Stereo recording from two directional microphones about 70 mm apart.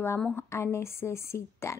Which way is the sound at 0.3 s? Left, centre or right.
Left.